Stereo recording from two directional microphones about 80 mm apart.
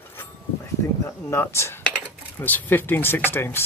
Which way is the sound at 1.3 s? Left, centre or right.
Left.